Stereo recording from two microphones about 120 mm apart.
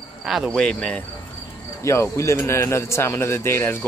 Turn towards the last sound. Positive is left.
turn(degrees=20)  # may be behind; listen again after turning